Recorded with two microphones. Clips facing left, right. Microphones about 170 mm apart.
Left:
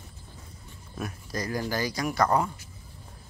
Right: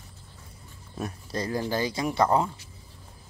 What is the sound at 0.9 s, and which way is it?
Speech, 30° right (ahead or behind).